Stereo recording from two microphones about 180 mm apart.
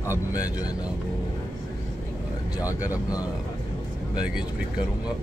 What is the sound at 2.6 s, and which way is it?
Speech, 20° left (ahead or behind).